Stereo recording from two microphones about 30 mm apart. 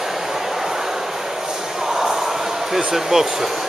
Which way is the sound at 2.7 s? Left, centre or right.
Centre.